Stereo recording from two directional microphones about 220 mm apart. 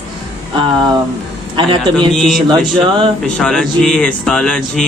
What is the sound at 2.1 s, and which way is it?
A man's voice, centre (ahead or behind).